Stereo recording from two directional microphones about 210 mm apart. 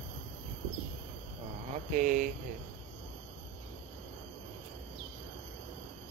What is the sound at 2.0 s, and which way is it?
Speech, 40° right (ahead or behind).